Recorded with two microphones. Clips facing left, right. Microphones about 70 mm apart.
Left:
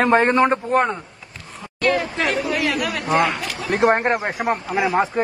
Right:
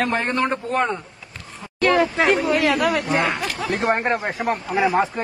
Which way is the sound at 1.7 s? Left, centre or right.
Right.